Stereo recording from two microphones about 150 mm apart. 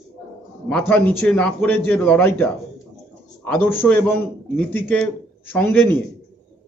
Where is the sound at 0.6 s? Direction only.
10° left (ahead or behind).